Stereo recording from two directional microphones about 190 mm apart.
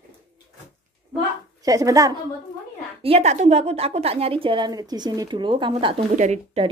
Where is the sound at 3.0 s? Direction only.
35° right (ahead or behind).